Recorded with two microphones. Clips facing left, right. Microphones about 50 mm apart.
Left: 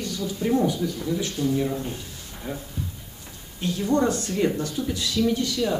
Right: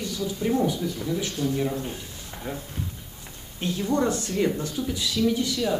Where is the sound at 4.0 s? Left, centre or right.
Centre.